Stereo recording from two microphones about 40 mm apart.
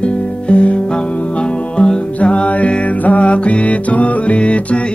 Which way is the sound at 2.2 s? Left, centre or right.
Left.